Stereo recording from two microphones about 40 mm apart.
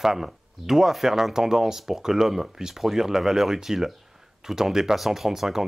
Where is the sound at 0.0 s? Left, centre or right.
Centre.